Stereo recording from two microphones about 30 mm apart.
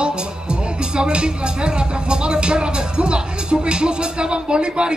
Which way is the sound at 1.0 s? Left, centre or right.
Right.